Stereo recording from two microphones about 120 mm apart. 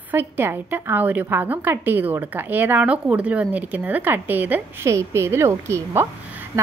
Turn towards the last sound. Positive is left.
turn(degrees=-20)  # may be behind; listen again after turning